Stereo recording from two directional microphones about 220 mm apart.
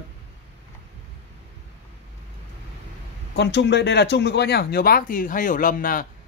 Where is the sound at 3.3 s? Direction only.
50° left (ahead or behind).